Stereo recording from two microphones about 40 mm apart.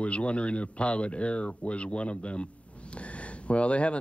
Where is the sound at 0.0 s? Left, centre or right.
Left.